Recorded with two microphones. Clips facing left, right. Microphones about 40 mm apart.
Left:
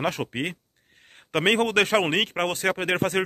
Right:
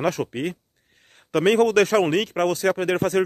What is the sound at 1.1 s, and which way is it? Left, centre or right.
A man's voice, left.